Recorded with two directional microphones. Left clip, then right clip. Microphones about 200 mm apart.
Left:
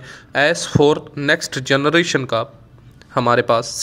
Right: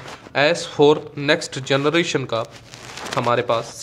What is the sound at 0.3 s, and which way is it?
A man's voice, 20° left (ahead or behind).